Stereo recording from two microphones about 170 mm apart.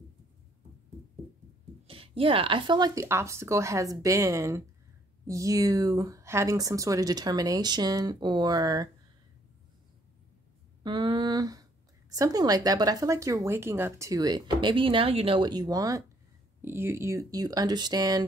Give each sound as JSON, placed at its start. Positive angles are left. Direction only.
{"t": 1.9, "sound": "speech", "side_deg": -35}
{"t": 10.8, "sound": "a sound", "side_deg": -25}
{"t": 12.1, "sound": "speech", "side_deg": -20}